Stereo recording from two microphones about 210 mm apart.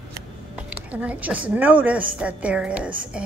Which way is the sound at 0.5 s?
5° right (ahead or behind).